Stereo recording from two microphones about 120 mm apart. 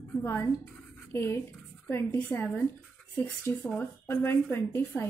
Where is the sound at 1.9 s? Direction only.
20° left (ahead or behind).